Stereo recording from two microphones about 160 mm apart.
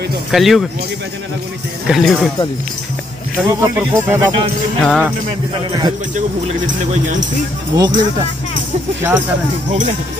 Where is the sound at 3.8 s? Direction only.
15° right (ahead or behind).